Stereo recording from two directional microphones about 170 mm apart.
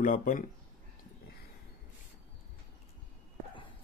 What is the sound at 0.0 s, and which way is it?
Speech, 50° left (ahead or behind).